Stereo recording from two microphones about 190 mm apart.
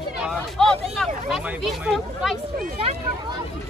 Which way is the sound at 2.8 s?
30° right (ahead or behind).